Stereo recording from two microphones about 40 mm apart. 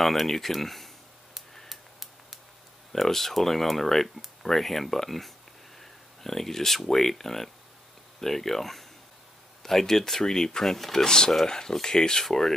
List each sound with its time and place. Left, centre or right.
0.0 s speech: centre
1.5 s a sound: centre
2.9 s speech: centre
11.1 s speech: centre